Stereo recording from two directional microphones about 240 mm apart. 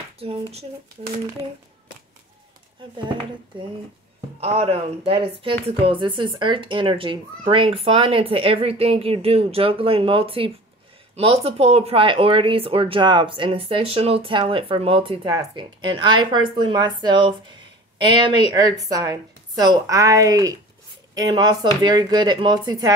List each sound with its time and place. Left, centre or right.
0.2 s speech: right
4.4 s speech: right